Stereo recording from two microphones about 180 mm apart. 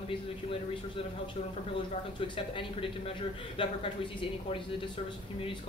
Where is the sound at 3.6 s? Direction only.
30° left (ahead or behind).